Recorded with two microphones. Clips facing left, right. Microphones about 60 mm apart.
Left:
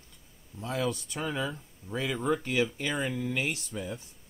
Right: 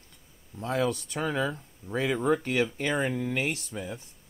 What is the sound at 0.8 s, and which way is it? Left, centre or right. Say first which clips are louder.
Speech: right 3 dB; right.